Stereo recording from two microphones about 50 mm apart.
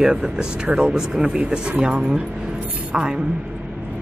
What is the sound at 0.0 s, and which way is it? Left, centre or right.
Speech, centre.